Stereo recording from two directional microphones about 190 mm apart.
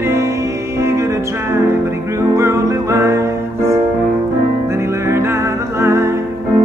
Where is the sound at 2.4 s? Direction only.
15° right (ahead or behind).